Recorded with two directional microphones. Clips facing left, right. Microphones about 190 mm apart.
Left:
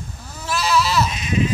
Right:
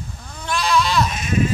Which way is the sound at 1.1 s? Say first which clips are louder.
Right 1 dB; 50° right (ahead or behind).